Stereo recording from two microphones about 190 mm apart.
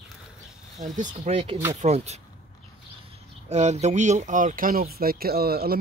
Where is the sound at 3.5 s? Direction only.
35° right (ahead or behind).